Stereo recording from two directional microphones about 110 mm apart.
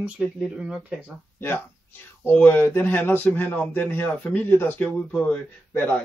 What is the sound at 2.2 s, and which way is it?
Speech, 15° left (ahead or behind).